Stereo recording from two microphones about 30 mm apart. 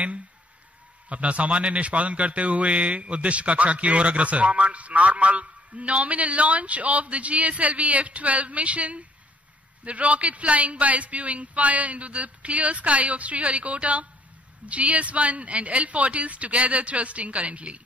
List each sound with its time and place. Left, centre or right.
1.0 s a man's voice: right